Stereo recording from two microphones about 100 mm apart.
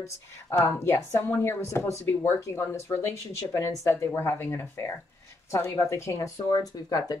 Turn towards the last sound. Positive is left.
turn(degrees=40)  # may be behind; listen again after turning